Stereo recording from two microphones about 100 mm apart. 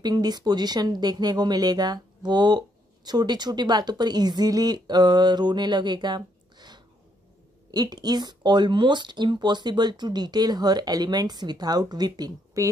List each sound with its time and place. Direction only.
0.0 s speech: 45° right (ahead or behind)